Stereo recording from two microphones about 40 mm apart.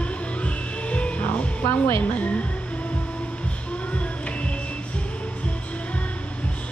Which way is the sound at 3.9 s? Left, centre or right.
Left.